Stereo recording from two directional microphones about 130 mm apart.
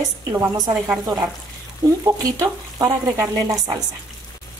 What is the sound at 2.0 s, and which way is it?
Speech, 25° right (ahead or behind).